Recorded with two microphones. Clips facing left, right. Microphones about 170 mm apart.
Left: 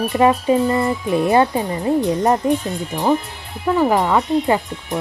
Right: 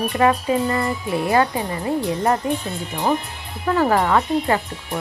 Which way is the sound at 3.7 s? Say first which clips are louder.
Left 2 dB; 10° left (ahead or behind).